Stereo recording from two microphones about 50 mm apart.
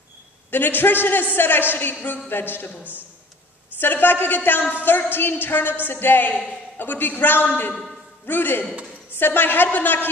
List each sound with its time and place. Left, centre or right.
0.5 s a woman's voice: left
1.3 s music: left
2.0 s a woman's voice: left
3.8 s a woman's voice: left
4.8 s music: left